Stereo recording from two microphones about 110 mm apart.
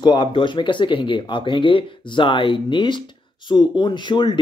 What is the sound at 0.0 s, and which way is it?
Speech, 45° left (ahead or behind).